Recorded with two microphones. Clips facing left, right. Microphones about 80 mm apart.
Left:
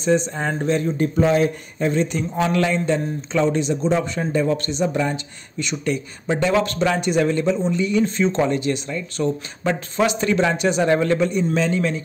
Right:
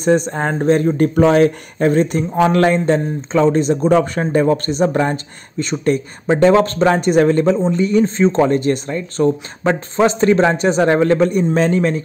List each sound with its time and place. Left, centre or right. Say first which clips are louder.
0.0 s speech: right 4 dB; right